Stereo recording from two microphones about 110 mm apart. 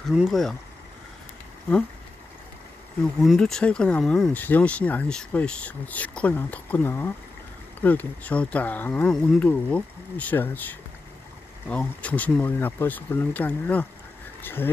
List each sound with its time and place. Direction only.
0.1 s speech: centre (ahead or behind)
3.0 s speech: 5° left (ahead or behind)
4.3 s speech: 15° left (ahead or behind)